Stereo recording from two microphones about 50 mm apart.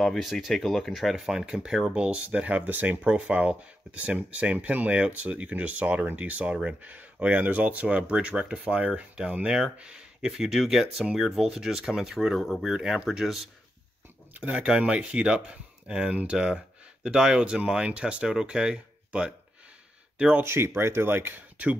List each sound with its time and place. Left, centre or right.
0.2 s speech: centre
1.1 s speech: centre
12.4 s speech: centre
12.7 s speech: centre
14.3 s speech: right
20.4 s speech: right